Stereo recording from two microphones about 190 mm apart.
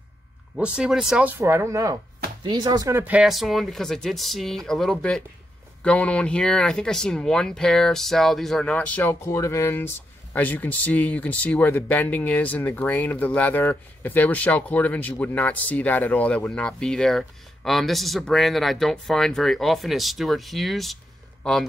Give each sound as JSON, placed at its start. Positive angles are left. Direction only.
{"t": 0.6, "sound": "speech", "side_deg": -5}
{"t": 1.4, "sound": "speech", "side_deg": -15}